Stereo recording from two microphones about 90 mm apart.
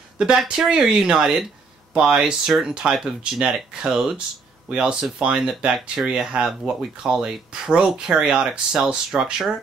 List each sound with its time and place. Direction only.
0.2 s speech: 10° right (ahead or behind)